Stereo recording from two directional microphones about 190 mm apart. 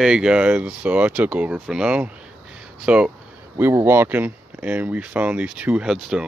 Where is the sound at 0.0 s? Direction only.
5° right (ahead or behind).